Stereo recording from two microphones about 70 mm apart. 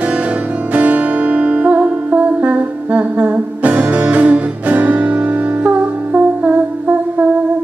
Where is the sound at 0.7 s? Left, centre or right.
Right.